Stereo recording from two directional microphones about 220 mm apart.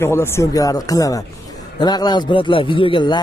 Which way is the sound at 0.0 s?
10° left (ahead or behind).